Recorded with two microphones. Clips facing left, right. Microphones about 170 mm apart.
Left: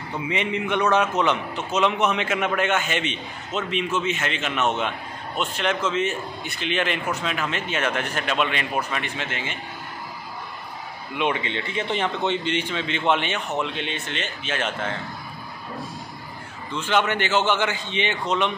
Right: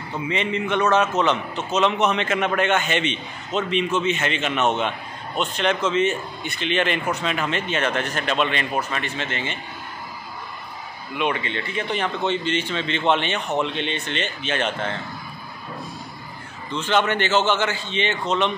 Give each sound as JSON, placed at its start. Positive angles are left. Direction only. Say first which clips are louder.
{"t": 0.3, "sound": "a man's voice", "louder": "right 1 dB", "side_deg": 15}
{"t": 11.1, "sound": "a man's voice", "louder": "even", "side_deg": 20}
{"t": 16.7, "sound": "a man's voice", "louder": "right 1 dB", "side_deg": 10}